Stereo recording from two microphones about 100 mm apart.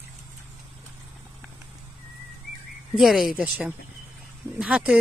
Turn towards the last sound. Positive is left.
turn(degrees=-10)  # may be behind; listen again after turning